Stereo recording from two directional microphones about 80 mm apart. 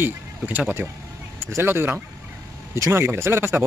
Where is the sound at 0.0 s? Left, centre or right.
Right.